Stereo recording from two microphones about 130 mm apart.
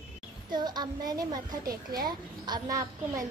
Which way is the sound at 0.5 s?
35° right (ahead or behind).